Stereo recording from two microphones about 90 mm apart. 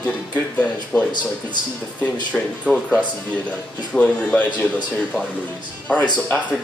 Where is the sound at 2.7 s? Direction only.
15° right (ahead or behind).